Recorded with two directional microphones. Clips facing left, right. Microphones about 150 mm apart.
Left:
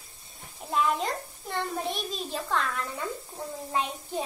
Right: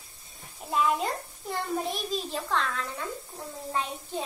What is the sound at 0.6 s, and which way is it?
A child's voice, centre (ahead or behind).